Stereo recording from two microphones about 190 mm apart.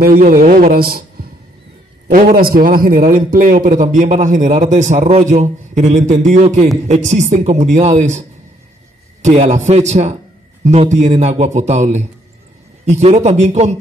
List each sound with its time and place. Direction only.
0.0 s a man's voice: 50° right (ahead or behind)